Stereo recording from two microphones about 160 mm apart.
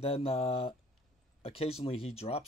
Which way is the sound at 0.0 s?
35° left (ahead or behind).